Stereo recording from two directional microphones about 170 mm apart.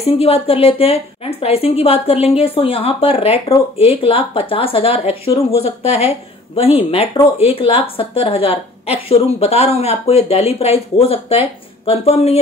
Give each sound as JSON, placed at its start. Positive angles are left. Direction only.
{"t": 0.0, "sound": "a woman's voice", "side_deg": 35}